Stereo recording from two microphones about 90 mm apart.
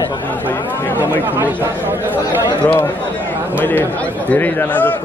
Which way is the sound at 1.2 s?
20° right (ahead or behind).